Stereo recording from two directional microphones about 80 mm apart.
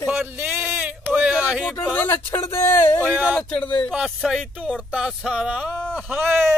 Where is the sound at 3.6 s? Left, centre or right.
Centre.